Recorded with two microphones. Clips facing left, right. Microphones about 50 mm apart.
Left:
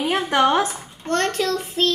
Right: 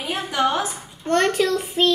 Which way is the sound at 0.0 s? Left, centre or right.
Left.